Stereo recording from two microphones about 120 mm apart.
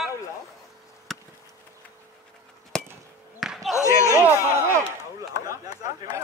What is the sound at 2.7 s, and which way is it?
Chop, 5° left (ahead or behind).